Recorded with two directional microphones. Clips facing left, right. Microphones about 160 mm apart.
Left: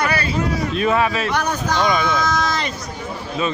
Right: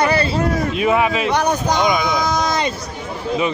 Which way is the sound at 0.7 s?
15° right (ahead or behind).